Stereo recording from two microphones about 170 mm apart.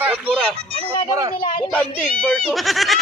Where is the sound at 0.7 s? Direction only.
30° left (ahead or behind).